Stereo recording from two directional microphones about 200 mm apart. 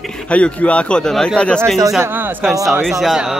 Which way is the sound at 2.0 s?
10° right (ahead or behind).